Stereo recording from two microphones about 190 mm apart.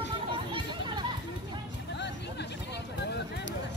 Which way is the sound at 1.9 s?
65° left (ahead or behind).